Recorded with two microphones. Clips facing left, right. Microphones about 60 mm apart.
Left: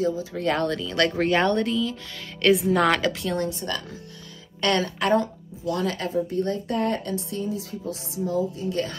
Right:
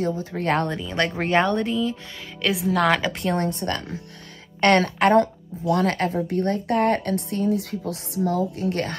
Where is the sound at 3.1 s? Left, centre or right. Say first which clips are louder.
Right 3 dB; right.